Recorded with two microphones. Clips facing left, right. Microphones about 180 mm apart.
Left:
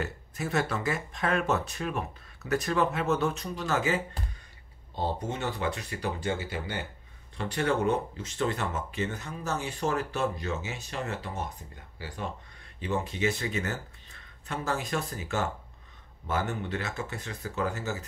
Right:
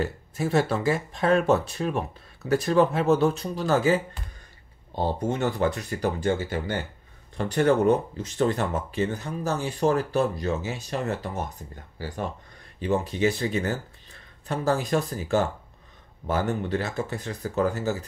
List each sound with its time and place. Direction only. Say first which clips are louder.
0.0 s speech: right 6 dB; 30° right (ahead or behind)
12.8 s speech: right 5 dB; 35° right (ahead or behind)